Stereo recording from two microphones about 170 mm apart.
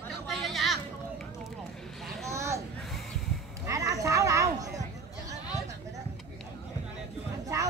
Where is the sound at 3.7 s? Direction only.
20° right (ahead or behind).